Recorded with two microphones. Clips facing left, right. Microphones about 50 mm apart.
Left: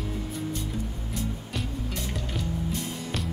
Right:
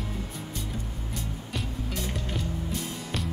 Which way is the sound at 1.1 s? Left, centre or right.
Centre.